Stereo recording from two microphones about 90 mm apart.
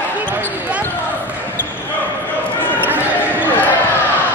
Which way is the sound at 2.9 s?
20° left (ahead or behind).